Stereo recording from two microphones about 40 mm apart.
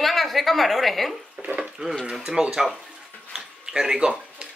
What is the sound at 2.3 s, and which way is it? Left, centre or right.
Speech, centre.